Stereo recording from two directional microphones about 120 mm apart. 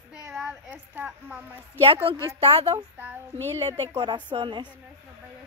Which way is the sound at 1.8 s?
50° right (ahead or behind).